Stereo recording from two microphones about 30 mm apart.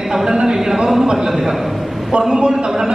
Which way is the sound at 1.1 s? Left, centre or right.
Centre.